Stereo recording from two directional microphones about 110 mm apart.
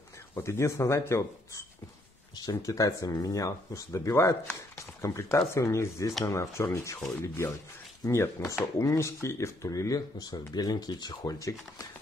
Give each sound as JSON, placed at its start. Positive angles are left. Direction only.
{"t": 0.3, "sound": "speech", "side_deg": 25}